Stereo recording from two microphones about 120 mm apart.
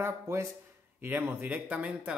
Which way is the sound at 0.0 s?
25° right (ahead or behind).